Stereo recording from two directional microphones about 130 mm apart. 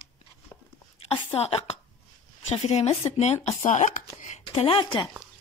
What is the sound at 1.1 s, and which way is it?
A woman's voice, 45° left (ahead or behind).